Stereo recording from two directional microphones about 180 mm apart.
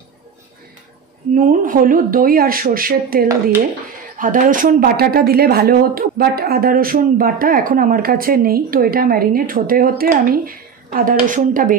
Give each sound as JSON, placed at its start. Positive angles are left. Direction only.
{"t": 1.3, "sound": "speech", "side_deg": -50}